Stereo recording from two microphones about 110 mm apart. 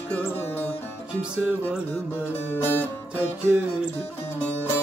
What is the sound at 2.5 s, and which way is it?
Music, 20° left (ahead or behind).